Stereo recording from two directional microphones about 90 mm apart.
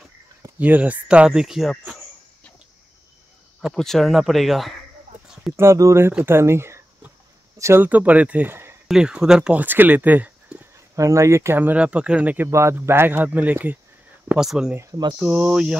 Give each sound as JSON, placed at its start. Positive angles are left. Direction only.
{"t": 0.6, "sound": "speech", "side_deg": -15}
{"t": 3.7, "sound": "speech", "side_deg": 5}
{"t": 5.6, "sound": "speech", "side_deg": -35}
{"t": 7.8, "sound": "speech", "side_deg": -15}
{"t": 8.8, "sound": "speech", "side_deg": -10}
{"t": 11.0, "sound": "speech", "side_deg": -35}
{"t": 12.4, "sound": "speech", "side_deg": -30}
{"t": 14.3, "sound": "speech", "side_deg": -5}